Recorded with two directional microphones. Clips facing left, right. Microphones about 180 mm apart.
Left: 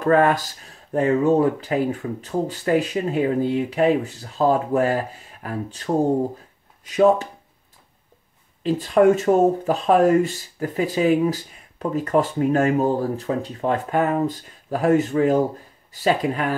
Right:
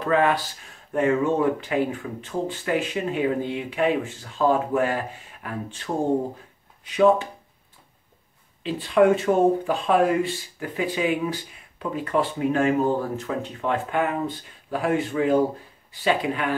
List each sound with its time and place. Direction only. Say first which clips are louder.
0.0 s speech: left 4 dB; 45° left (ahead or behind)
8.6 s speech: left 2 dB; 45° left (ahead or behind)